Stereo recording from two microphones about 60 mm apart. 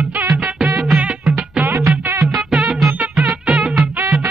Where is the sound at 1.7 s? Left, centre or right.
Right.